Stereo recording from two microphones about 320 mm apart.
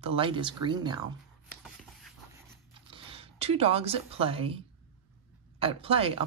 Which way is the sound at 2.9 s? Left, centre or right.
Centre.